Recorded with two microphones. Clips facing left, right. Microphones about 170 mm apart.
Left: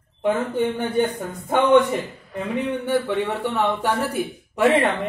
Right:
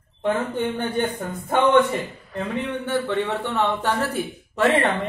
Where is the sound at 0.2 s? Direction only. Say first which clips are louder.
Left 2 dB; 5° left (ahead or behind).